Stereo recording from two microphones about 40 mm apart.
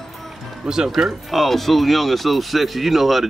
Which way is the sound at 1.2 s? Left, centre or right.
Centre.